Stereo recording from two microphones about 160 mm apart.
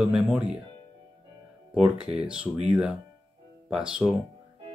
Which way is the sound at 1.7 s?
5° right (ahead or behind).